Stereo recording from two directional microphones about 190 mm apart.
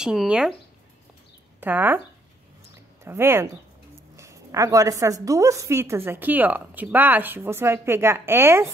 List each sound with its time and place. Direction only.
0.0 s speech: 5° right (ahead or behind)
1.6 s a woman's voice: 10° right (ahead or behind)
3.0 s a woman's voice: 15° right (ahead or behind)